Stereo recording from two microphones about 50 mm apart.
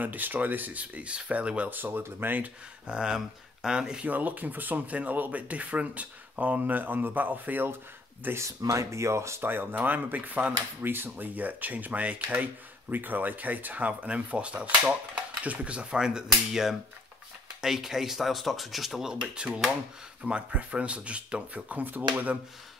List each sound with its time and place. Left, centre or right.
0.0 s speech: right
1.7 s speech: right
2.9 s speech: centre
4.0 s speech: right
8.4 s speech: right
9.4 s speech: right
10.8 s speech: right
12.9 s speech: right; by 19.1 s centre
19.2 s speech: right